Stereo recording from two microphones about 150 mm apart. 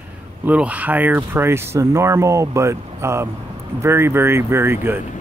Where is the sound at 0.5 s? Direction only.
10° right (ahead or behind).